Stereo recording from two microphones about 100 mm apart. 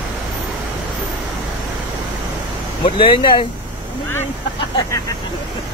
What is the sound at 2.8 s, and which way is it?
Speech, 55° left (ahead or behind).